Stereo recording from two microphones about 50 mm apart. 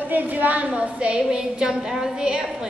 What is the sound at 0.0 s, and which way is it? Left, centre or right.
A woman's voice, right.